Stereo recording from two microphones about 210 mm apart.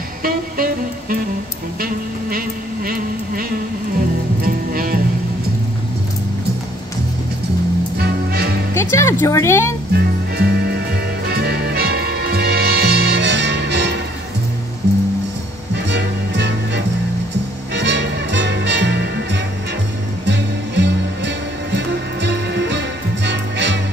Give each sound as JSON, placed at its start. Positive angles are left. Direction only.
{"t": 0.2, "sound": "music", "side_deg": -45}
{"t": 8.0, "sound": "music", "side_deg": -50}
{"t": 8.7, "sound": "speech", "side_deg": 15}
{"t": 9.9, "sound": "music", "side_deg": -50}
{"t": 15.7, "sound": "music", "side_deg": -55}